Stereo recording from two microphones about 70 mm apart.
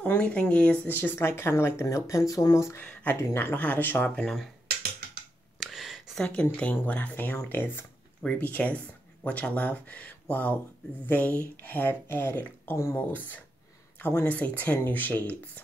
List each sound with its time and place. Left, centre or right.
0.0 s speech: left
2.8 s speech: left
5.6 s a sound: centre
6.5 s speech: left
8.2 s speech: left